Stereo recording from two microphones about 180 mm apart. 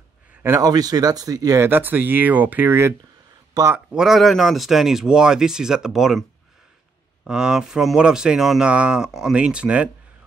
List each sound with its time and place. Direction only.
0.3 s speech: 15° right (ahead or behind)
7.2 s speech: 5° right (ahead or behind)